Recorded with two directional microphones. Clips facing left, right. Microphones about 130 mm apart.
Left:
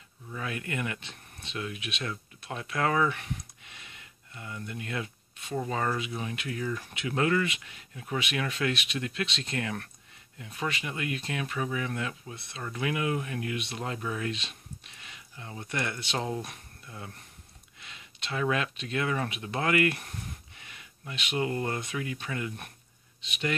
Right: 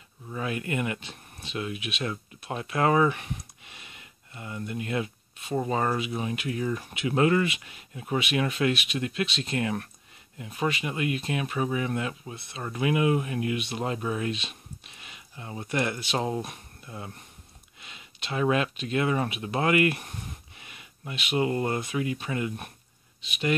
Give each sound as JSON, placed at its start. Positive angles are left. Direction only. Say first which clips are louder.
{"t": 0.3, "sound": "speech", "louder": "right 5 dB", "side_deg": -25}
{"t": 19.4, "sound": "a sound", "louder": "right 3 dB", "side_deg": -20}
{"t": 21.4, "sound": "speech", "louder": "right 4 dB", "side_deg": -20}